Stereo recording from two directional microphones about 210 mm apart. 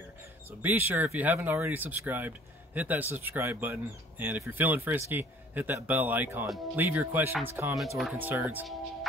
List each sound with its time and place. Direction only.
0.6 s speech: 10° right (ahead or behind)